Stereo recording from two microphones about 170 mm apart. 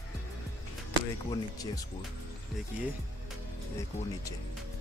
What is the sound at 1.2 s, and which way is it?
Speech, 20° left (ahead or behind).